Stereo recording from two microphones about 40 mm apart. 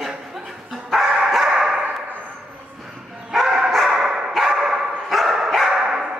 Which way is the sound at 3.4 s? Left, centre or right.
Centre.